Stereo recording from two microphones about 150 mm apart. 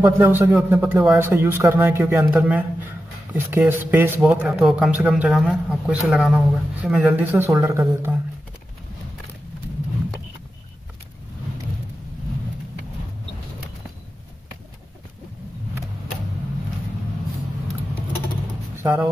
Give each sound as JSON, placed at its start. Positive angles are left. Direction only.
{"t": 0.0, "sound": "a man's voice", "side_deg": -10}
{"t": 18.8, "sound": "music", "side_deg": -15}